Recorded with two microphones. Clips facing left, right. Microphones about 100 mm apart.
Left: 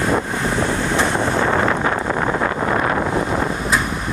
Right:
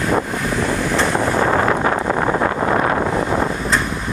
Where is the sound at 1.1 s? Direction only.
35° right (ahead or behind).